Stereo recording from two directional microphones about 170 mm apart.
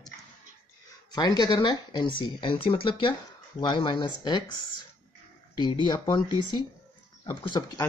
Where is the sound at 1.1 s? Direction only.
25° left (ahead or behind).